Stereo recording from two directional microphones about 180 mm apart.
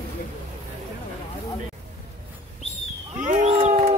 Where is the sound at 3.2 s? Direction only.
40° right (ahead or behind).